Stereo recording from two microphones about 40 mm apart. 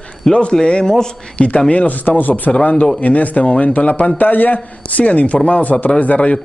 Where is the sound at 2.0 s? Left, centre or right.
Left.